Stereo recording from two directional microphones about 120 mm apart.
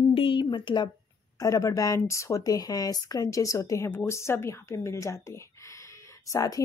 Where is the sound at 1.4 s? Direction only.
30° left (ahead or behind).